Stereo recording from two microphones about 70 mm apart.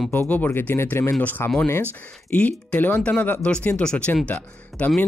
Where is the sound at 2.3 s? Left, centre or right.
Centre.